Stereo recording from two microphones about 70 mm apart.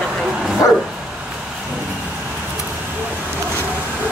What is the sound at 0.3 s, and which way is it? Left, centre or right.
Bow-wow, centre.